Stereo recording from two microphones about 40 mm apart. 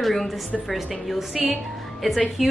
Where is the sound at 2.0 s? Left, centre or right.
Centre.